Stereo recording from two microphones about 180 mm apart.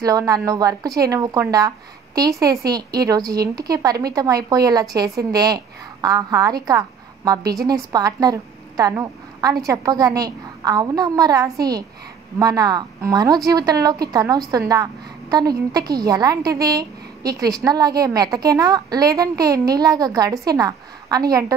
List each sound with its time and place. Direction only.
0.0 s a woman's voice: 20° right (ahead or behind)